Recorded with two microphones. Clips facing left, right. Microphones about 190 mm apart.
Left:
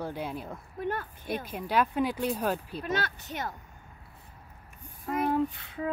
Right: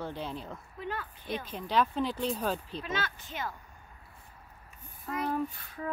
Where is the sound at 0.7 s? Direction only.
50° left (ahead or behind).